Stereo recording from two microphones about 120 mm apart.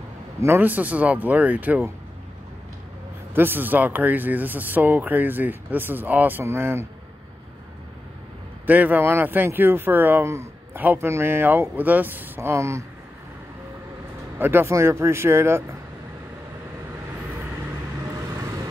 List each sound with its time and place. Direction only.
0.4 s speech: 20° right (ahead or behind)
3.3 s speech: 15° right (ahead or behind)
8.6 s speech: 15° right (ahead or behind)
14.4 s speech: 20° right (ahead or behind)